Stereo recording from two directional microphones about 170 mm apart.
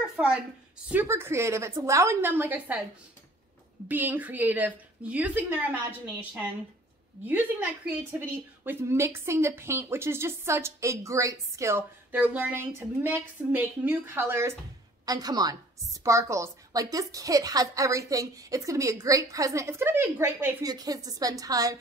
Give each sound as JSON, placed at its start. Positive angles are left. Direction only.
{"t": 0.2, "sound": "a woman's voice", "side_deg": -10}
{"t": 3.9, "sound": "a woman's voice", "side_deg": -10}